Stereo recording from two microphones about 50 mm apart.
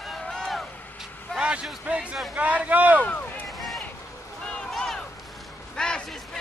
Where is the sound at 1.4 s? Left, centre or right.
Right.